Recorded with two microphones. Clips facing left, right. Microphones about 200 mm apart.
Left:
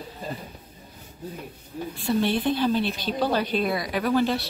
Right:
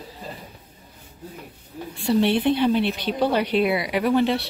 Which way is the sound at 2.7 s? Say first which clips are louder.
Right 3 dB; 65° right (ahead or behind).